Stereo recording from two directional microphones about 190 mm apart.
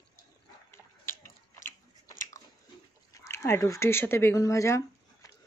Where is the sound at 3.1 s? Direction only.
15° left (ahead or behind).